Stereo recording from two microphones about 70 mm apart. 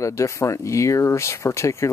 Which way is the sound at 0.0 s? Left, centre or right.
Left.